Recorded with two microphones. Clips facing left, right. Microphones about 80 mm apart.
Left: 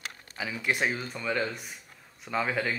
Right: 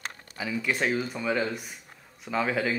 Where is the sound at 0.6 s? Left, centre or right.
Centre.